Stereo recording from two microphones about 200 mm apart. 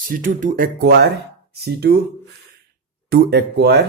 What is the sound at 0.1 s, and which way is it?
Speech, 40° right (ahead or behind).